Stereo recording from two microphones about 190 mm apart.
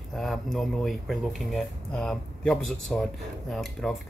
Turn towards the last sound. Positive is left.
turn(degrees=0)  # may be behind; listen again after turning